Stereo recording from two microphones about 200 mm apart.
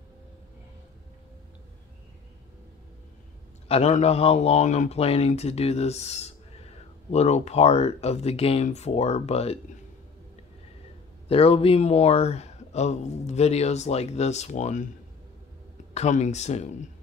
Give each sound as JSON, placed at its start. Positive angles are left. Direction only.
{"t": 3.6, "sound": "speech", "side_deg": 30}
{"t": 11.2, "sound": "speech", "side_deg": 30}
{"t": 15.9, "sound": "speech", "side_deg": 35}